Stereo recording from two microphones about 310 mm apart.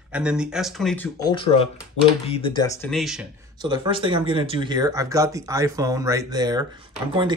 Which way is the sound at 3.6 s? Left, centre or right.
Centre.